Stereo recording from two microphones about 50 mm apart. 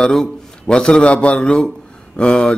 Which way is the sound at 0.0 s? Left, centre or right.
Centre.